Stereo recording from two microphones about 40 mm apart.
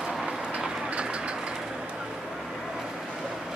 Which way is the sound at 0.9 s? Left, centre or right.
Right.